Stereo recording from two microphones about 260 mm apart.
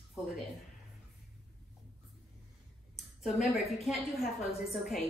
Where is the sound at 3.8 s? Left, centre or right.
Centre.